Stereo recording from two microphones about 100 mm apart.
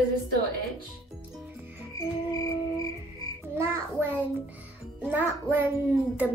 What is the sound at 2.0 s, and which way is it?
Music, 35° left (ahead or behind).